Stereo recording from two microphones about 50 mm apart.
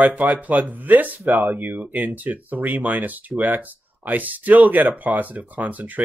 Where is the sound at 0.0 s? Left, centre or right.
Right.